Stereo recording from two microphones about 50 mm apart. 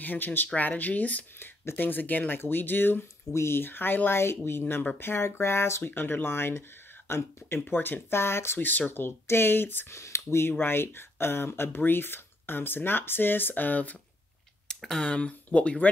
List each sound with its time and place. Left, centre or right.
0.0 s speech: left
1.4 s speech: left
3.3 s speech: left
5.9 s speech: left
7.6 s speech: left
8.5 s speech: left
8.9 s speech: left
9.9 s speech: left
10.6 s speech: left
14.8 s speech: centre
15.0 s speech: left